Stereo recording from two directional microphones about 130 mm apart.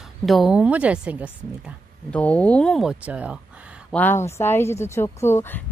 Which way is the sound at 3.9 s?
15° left (ahead or behind).